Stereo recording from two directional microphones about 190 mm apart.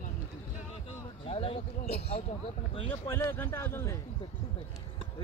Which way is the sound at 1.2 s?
30° left (ahead or behind).